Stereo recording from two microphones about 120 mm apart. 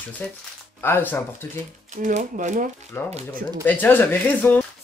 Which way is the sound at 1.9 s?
90° right.